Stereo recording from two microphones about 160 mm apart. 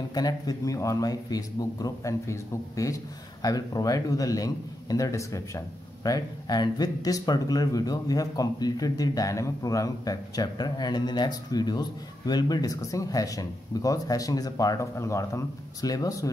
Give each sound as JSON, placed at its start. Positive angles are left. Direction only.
{"t": 0.1, "sound": "speech", "side_deg": 25}